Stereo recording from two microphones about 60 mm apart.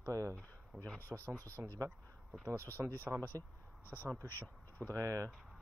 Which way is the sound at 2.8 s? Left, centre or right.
Right.